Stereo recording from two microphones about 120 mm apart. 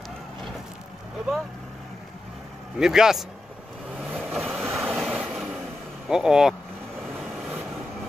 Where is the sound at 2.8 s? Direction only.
5° right (ahead or behind).